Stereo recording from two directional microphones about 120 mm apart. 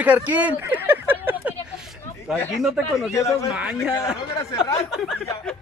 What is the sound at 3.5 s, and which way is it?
Speech, 5° right (ahead or behind).